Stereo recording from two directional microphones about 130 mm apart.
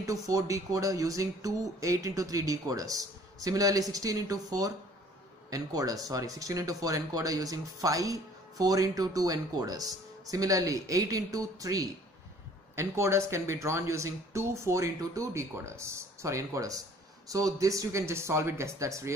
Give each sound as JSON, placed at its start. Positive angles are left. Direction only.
{"t": 0.0, "sound": "speech", "side_deg": -25}